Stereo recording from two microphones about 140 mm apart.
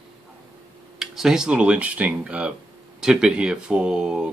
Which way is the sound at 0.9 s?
5° right (ahead or behind).